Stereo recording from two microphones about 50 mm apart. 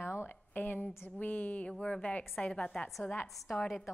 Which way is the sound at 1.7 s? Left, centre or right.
Centre.